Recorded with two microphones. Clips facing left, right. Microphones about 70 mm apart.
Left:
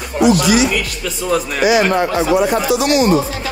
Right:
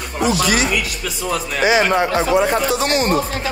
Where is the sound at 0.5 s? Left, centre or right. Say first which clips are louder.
Left 4 dB; right.